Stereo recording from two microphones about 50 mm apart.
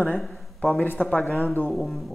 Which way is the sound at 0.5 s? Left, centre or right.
Left.